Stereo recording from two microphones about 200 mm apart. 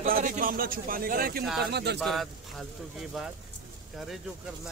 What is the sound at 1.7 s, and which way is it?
Speech, 55° right (ahead or behind).